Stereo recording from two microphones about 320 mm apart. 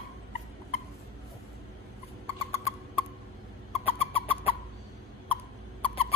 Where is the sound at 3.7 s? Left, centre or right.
Centre.